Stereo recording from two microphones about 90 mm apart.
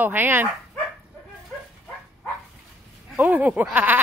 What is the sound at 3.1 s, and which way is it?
Speech, 20° right (ahead or behind).